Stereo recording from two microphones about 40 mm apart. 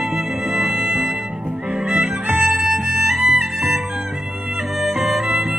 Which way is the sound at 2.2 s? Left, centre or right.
Right.